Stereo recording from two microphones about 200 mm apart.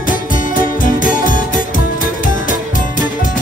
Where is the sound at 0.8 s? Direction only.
40° left (ahead or behind).